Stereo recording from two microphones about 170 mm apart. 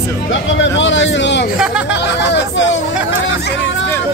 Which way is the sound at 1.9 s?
90° left.